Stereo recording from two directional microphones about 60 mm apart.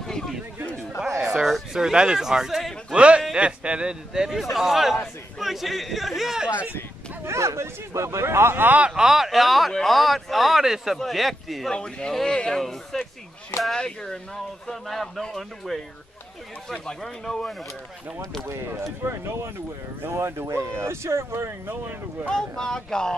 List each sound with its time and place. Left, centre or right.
1.4 s speech: centre
2.9 s speech: centre
7.2 s speech: right
8.6 s speech: right
8.9 s speech: centre
11.7 s speech: centre
19.0 s speech: right
21.6 s speech: right
22.3 s speech: centre